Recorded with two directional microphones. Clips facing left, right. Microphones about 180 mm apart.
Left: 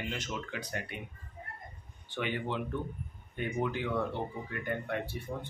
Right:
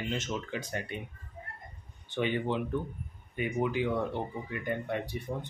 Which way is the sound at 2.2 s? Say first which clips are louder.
Right 4 dB; 20° right (ahead or behind).